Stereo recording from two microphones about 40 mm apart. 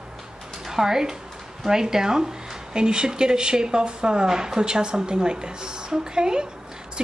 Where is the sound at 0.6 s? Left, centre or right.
Centre.